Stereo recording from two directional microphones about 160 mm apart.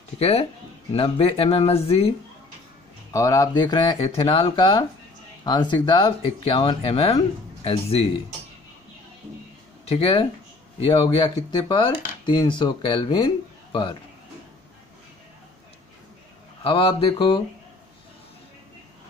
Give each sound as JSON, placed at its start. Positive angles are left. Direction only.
{"t": 0.2, "sound": "speech", "side_deg": 40}
{"t": 3.1, "sound": "speech", "side_deg": 20}
{"t": 9.8, "sound": "speech", "side_deg": 35}
{"t": 16.6, "sound": "speech", "side_deg": 35}